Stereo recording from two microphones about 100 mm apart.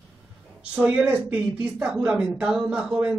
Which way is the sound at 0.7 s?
15° right (ahead or behind).